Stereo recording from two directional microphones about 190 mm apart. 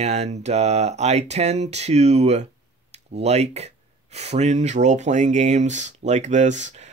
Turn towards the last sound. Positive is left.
turn(degrees=-40)  # may be behind; listen again after turning